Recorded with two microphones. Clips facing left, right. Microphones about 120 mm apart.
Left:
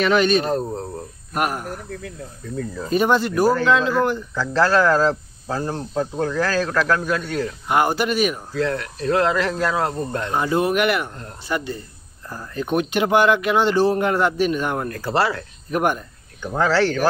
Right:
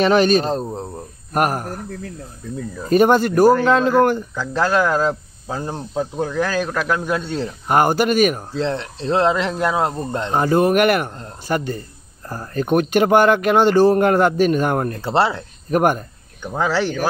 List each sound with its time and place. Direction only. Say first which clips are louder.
0.0 s speech: right 3 dB; 40° right (ahead or behind)
0.5 s speech: even; 25° right (ahead or behind)
1.3 s speech: right 4 dB; 45° right (ahead or behind)
2.9 s speech: right 5 dB; 50° right (ahead or behind)
4.4 s speech: left 3 dB; 15° right (ahead or behind)
7.6 s speech: right 4 dB; 45° right (ahead or behind)
8.5 s speech: even; 25° right (ahead or behind)
10.3 s speech: right 5 dB; 45° right (ahead or behind)
14.9 s speech: right 3 dB; 25° right (ahead or behind)
15.7 s speech: right 4 dB; 45° right (ahead or behind)
16.4 s speech: left 1 dB; 15° right (ahead or behind)